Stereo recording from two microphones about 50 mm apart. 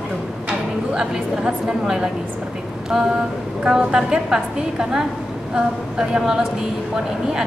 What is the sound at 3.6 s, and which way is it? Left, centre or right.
A woman's voice, centre.